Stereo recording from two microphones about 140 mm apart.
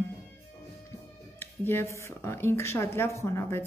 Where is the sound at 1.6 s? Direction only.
15° left (ahead or behind).